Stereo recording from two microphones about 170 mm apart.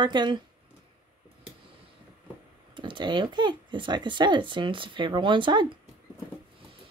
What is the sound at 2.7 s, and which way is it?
Speech, 30° right (ahead or behind).